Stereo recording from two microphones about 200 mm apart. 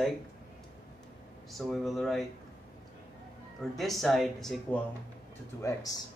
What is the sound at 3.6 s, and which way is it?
Speech, centre (ahead or behind).